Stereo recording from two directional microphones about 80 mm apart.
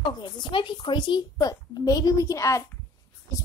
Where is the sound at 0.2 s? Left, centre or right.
Left.